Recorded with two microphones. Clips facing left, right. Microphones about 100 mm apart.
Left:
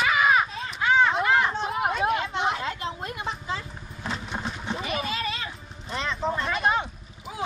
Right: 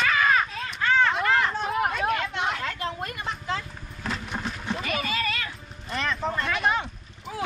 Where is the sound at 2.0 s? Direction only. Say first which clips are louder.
Left 1 dB; 15° left (ahead or behind).